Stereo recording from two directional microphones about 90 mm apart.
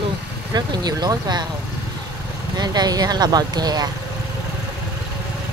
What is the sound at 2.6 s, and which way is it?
Speech, 50° right (ahead or behind).